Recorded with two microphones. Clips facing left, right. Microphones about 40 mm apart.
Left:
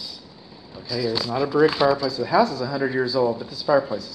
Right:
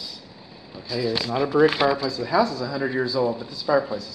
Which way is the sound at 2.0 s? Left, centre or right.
Centre.